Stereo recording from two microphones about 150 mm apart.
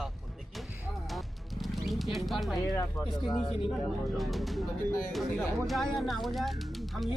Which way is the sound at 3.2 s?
35° left (ahead or behind).